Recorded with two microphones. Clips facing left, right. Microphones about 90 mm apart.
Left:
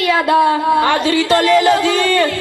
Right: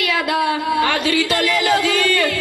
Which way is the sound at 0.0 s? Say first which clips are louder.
Left 6 dB; 35° left (ahead or behind).